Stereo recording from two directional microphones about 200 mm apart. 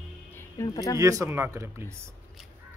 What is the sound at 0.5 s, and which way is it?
Speech, 15° left (ahead or behind).